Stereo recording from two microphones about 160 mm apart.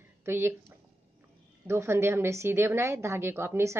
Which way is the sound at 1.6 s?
15° right (ahead or behind).